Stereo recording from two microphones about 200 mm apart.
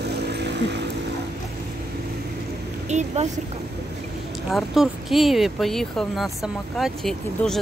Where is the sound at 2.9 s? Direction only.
35° right (ahead or behind).